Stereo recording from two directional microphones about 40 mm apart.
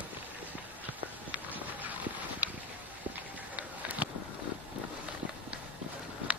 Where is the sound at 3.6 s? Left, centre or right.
Right.